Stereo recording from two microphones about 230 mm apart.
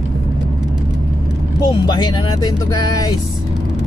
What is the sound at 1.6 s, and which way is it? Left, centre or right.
Speech, centre.